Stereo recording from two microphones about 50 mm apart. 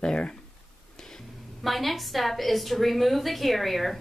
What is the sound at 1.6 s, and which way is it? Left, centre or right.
A woman's voice, centre.